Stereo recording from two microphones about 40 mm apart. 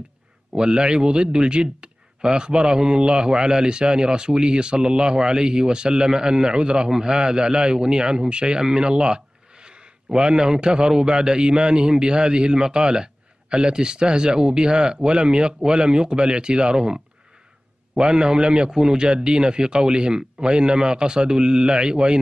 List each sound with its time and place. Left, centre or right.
0.5 s a man's voice: right